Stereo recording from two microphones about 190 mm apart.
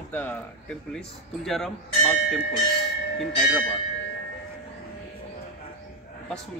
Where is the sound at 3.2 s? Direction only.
Centre (ahead or behind).